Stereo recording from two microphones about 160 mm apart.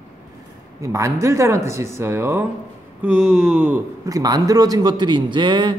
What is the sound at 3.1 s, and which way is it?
Speech, 5° right (ahead or behind).